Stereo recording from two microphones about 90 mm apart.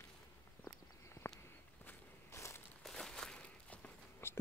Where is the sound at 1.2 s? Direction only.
30° left (ahead or behind).